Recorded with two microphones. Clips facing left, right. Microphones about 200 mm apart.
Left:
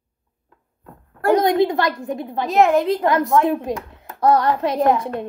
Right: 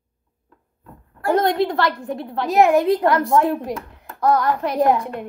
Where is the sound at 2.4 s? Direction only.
Centre (ahead or behind).